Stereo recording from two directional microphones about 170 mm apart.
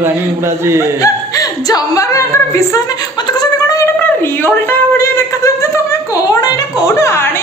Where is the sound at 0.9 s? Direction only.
20° left (ahead or behind).